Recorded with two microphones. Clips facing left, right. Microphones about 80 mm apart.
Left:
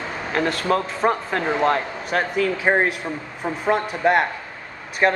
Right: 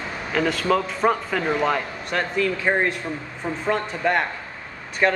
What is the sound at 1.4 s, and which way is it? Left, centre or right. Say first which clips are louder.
Speech: left 1 dB; centre.